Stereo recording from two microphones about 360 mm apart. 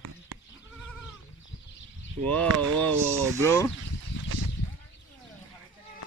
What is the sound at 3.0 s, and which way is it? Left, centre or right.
Speech, centre.